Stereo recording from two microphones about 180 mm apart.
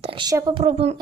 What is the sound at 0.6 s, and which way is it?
Speech, 40° right (ahead or behind).